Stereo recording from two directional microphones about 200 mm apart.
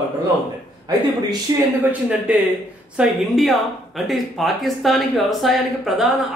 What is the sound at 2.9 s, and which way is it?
Speech, centre (ahead or behind).